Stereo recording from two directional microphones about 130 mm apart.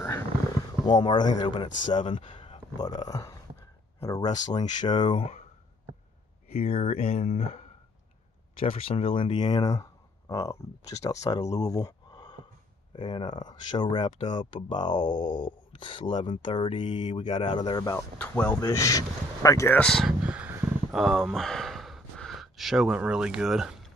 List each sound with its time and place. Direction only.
0.8 s speech: 35° left (ahead or behind)
2.8 s speech: 30° left (ahead or behind)
6.5 s speech: 55° left (ahead or behind)
8.5 s speech: 45° left (ahead or behind); by 11.6 s 30° left (ahead or behind)
11.7 s a sound: 30° left (ahead or behind)
12.9 s speech: 35° left (ahead or behind)
15.0 s a sound: 90° left
15.8 s speech: 40° left (ahead or behind)
17.9 s speech: 15° left (ahead or behind)
18.6 s speech: 25° left (ahead or behind)
19.8 s speech: 5° left (ahead or behind)
20.2 s a sound: 10° right (ahead or behind)
20.9 s speech: centre (ahead or behind)